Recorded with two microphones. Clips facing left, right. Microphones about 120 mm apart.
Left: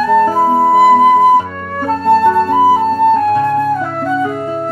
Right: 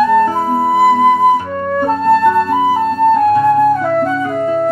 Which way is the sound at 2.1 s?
30° left (ahead or behind).